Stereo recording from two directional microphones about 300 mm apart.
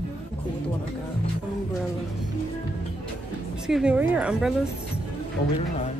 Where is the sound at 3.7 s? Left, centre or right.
Centre.